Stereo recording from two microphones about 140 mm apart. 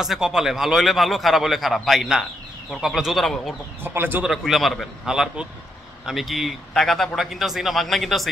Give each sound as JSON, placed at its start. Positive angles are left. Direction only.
{"t": 0.0, "sound": "a man's voice", "side_deg": -5}
{"t": 3.8, "sound": "speech", "side_deg": -15}
{"t": 4.3, "sound": "a man's voice", "side_deg": 0}